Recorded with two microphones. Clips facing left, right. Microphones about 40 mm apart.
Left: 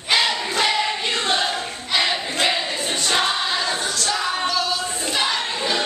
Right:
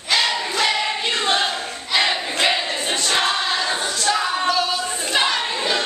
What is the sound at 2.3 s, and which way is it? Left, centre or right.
Crowd, centre.